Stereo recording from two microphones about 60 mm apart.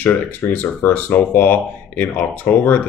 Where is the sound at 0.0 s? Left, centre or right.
Left.